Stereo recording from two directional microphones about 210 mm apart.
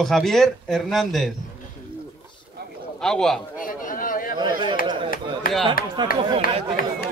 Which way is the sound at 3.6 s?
40° left (ahead or behind).